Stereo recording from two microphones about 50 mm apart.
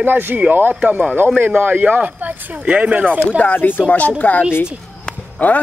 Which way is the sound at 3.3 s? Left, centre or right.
Left.